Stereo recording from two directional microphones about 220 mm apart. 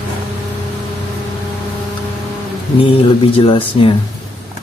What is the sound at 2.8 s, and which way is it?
Speech, 25° left (ahead or behind).